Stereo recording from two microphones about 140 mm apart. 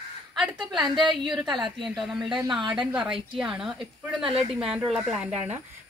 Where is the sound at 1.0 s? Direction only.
35° right (ahead or behind).